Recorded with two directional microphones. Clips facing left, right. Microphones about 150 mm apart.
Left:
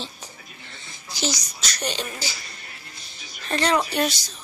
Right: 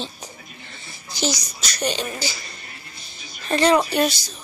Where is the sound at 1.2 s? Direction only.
5° right (ahead or behind).